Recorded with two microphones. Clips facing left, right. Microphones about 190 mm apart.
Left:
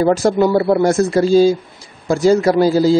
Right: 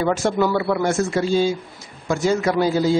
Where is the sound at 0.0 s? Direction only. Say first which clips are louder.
Left 6 dB; 35° left (ahead or behind).